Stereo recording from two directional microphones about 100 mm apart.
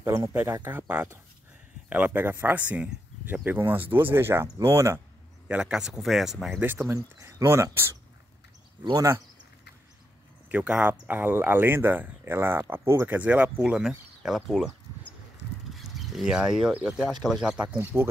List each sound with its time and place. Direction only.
0.0 s speech: 25° right (ahead or behind)
5.5 s speech: 10° right (ahead or behind)
6.6 s speech: 20° right (ahead or behind)
7.2 s speech: 30° right (ahead or behind)
8.9 s speech: 30° right (ahead or behind)
10.5 s speech: 10° right (ahead or behind)
15.7 s speech: centre (ahead or behind)
17.9 s speech: 20° right (ahead or behind)